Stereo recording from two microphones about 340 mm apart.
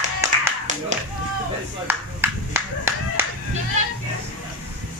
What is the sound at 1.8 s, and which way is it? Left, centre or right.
Clapping, centre.